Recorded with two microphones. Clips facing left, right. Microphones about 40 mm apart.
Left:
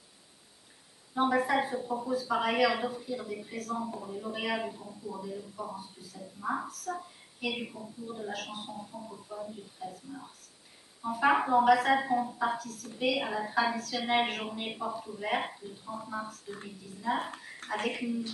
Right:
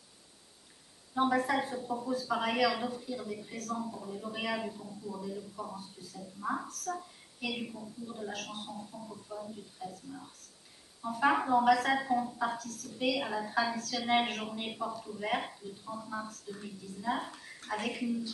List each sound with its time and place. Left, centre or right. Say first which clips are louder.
1.1 s a man's voice: left 2 dB; centre